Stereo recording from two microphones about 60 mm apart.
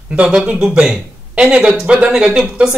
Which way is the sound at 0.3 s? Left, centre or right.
Centre.